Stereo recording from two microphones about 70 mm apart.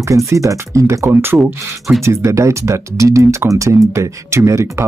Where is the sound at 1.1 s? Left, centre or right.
Right.